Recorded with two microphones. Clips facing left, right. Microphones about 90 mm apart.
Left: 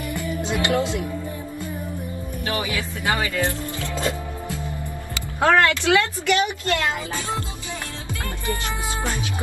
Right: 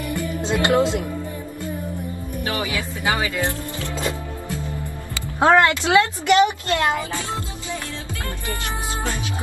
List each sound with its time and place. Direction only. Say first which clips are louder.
0.1 s music: right 2 dB; 20° left (ahead or behind)
0.4 s speech: right 4 dB; 20° right (ahead or behind)
2.4 s speech: right 1 dB; 20° right (ahead or behind)
5.4 s speech: right 2 dB; 20° right (ahead or behind)